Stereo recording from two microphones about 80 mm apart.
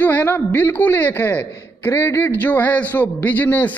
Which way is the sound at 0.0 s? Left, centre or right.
Left.